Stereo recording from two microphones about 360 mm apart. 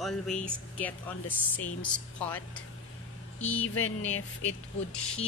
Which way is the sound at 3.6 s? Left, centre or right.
Left.